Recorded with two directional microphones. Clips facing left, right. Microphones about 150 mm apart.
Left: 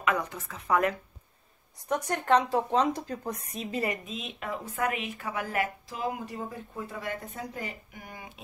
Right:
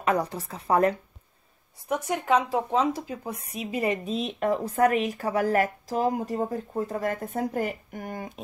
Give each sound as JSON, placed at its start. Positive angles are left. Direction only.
{"t": 0.0, "sound": "speech", "side_deg": -35}
{"t": 1.9, "sound": "a woman's voice", "side_deg": -5}
{"t": 3.8, "sound": "speech", "side_deg": -25}
{"t": 4.1, "sound": "speech", "side_deg": -40}